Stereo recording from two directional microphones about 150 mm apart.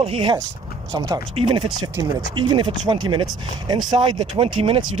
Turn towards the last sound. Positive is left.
turn(degrees=-35)  # may be behind; listen again after turning